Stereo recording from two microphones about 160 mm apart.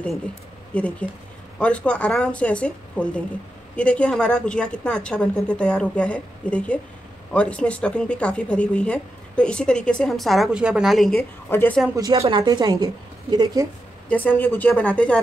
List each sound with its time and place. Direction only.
0.7 s speech: 10° left (ahead or behind)
11.1 s speech: 10° left (ahead or behind)
12.0 s a woman's voice: 25° right (ahead or behind)
14.0 s speech: 10° left (ahead or behind)